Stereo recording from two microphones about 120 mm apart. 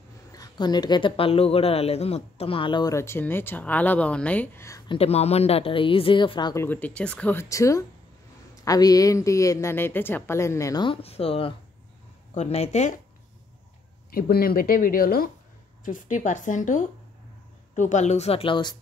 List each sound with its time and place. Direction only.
0.3 s speech: 35° left (ahead or behind)
2.9 s speech: 20° left (ahead or behind)
4.6 s speech: 25° left (ahead or behind)
4.8 s speech: 55° left (ahead or behind)
6.5 s speech: 20° left (ahead or behind)
7.4 s speech: 25° left (ahead or behind)
10.8 s speech: 50° left (ahead or behind)
12.4 s speech: 65° left (ahead or behind)
15.8 s speech: 90° left; by 18.8 s 40° left (ahead or behind)